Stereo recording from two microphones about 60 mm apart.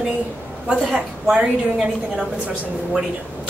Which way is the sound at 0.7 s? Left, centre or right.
Centre.